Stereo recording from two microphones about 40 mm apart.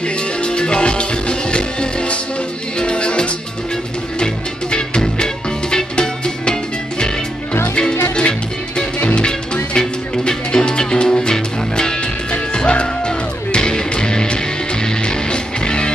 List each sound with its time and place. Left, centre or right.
0.4 s music: left
8.2 s music: left